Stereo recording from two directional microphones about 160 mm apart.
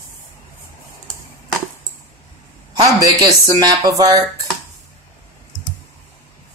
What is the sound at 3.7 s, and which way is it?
Speech, 20° right (ahead or behind).